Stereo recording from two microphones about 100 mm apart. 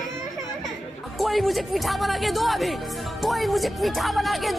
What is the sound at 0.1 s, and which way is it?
Speech, 5° left (ahead or behind).